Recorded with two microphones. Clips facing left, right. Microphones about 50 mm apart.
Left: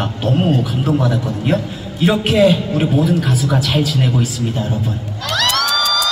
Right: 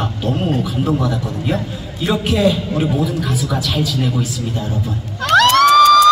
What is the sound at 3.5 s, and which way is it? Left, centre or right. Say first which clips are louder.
Speech: left 3 dB; left.